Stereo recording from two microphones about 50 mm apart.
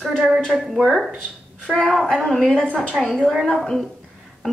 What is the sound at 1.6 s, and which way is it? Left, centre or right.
Speech, centre.